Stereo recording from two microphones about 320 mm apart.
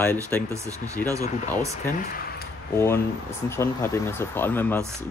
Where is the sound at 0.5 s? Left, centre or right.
Centre.